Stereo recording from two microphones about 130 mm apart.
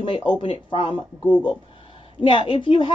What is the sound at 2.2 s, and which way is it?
Speech, 40° left (ahead or behind).